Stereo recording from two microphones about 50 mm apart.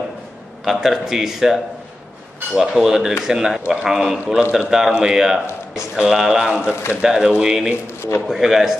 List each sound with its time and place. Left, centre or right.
0.7 s speech: centre
2.7 s speech: centre
6.7 s speech: left
7.0 s speech: centre
7.8 s speech: left
8.3 s speech: centre